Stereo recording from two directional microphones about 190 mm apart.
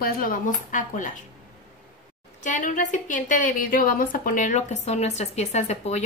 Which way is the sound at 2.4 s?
45° left (ahead or behind).